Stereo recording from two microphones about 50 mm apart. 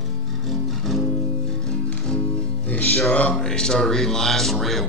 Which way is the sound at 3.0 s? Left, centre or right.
Left.